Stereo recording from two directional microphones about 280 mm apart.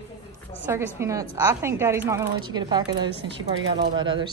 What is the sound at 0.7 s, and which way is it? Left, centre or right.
A woman's voice, centre.